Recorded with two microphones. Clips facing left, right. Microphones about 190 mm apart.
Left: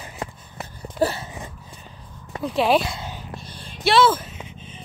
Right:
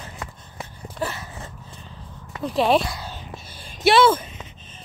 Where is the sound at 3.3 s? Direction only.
5° right (ahead or behind).